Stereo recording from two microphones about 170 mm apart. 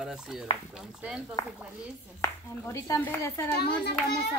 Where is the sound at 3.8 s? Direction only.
65° left (ahead or behind).